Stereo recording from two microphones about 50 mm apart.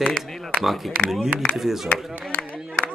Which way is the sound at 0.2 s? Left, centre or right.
Centre.